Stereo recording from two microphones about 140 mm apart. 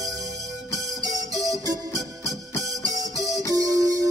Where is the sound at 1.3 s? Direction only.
25° right (ahead or behind).